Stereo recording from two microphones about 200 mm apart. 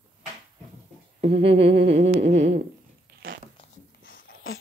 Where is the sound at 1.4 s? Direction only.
30° right (ahead or behind).